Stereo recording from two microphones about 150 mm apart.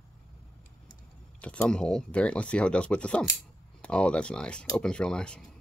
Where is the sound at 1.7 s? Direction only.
5° left (ahead or behind).